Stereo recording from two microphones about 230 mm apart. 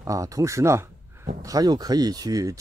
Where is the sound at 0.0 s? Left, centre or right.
Centre.